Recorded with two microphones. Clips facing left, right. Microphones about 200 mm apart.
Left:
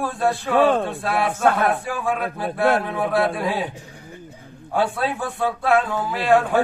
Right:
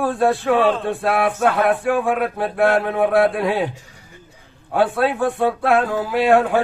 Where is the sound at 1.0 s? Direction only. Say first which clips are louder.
Right 4 dB; 60° right (ahead or behind).